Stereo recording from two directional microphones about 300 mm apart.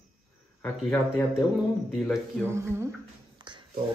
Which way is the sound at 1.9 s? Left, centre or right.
Centre.